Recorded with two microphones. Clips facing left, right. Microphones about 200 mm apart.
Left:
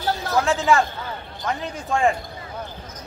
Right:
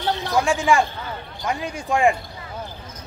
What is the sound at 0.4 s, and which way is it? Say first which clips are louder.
Speech: even; 15° right (ahead or behind).